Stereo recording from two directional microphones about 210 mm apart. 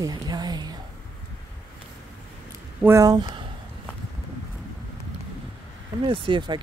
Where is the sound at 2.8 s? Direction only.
15° right (ahead or behind).